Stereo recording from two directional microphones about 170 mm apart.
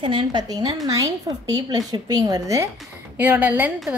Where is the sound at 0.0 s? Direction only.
30° right (ahead or behind).